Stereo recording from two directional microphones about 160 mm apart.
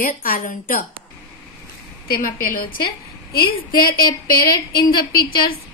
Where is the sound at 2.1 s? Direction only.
60° left (ahead or behind).